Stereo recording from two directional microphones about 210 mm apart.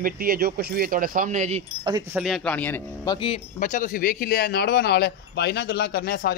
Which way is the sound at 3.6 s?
40° left (ahead or behind).